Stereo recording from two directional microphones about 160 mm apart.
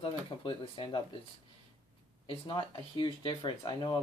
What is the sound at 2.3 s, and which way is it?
Speech, 30° left (ahead or behind).